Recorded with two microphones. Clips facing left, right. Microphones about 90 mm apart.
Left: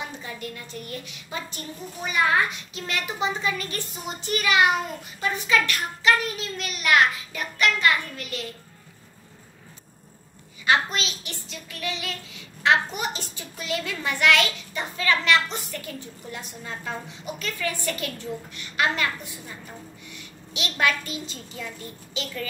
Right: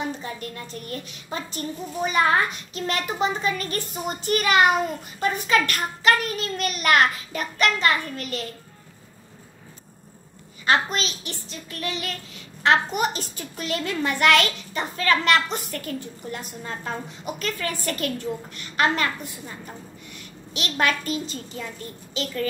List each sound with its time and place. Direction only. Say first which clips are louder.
0.2 s a woman's voice: right 2 dB; 40° right (ahead or behind)
2.7 s a child's voice: right 4 dB; 45° right (ahead or behind)
10.6 s a child's voice: right 1 dB; 40° right (ahead or behind)
20.5 s a child's voice: right 1 dB; 40° right (ahead or behind)